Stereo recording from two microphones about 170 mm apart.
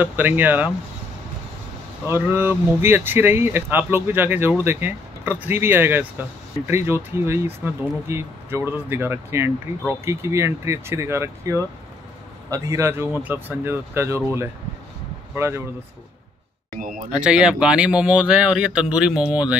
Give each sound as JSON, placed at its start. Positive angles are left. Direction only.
{"t": 0.0, "sound": "speech", "side_deg": -10}
{"t": 2.0, "sound": "speech", "side_deg": -15}
{"t": 16.7, "sound": "speech", "side_deg": -55}
{"t": 17.1, "sound": "speech", "side_deg": -5}